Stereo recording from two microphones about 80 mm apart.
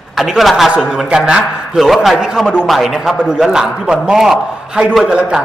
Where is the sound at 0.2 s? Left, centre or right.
Centre.